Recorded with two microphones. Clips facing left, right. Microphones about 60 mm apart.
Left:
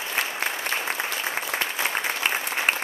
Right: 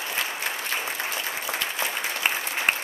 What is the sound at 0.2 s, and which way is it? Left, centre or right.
Applause, left.